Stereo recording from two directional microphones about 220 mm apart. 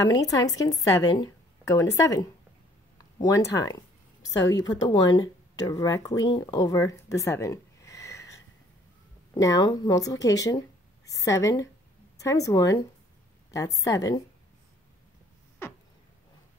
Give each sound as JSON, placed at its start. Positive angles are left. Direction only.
{"t": 0.2, "sound": "a woman's voice", "side_deg": 15}
{"t": 9.4, "sound": "a woman's voice", "side_deg": 15}